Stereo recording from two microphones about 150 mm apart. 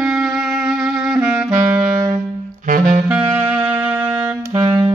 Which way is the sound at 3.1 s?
10° right (ahead or behind).